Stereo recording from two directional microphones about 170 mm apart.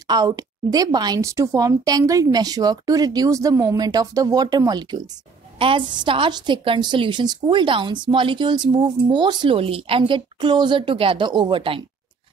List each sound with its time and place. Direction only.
0.1 s a woman's voice: 20° right (ahead or behind)